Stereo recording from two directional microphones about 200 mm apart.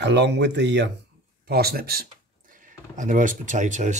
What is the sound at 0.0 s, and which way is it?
Speech, 60° right (ahead or behind).